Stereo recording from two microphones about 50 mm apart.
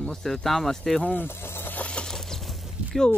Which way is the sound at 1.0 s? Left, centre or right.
Left.